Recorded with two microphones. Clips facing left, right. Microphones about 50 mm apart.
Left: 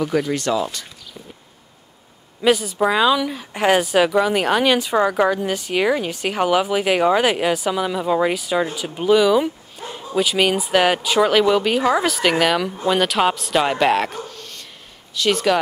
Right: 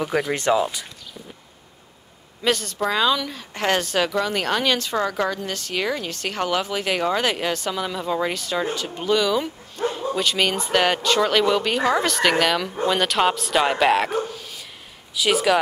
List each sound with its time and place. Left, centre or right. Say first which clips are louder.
0.0 s speech: left 2 dB; centre
2.4 s speech: left 5 dB; centre